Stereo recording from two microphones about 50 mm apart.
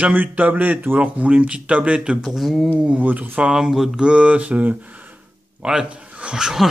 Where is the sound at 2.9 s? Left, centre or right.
Right.